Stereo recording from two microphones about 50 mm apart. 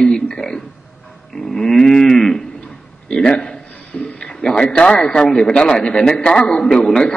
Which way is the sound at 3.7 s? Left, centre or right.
Left.